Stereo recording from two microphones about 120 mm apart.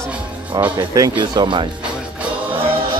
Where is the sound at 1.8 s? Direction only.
10° right (ahead or behind).